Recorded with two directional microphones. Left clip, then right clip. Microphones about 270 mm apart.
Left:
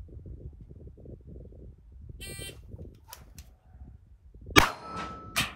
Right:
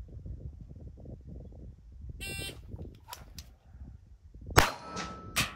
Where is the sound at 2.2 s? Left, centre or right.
Centre.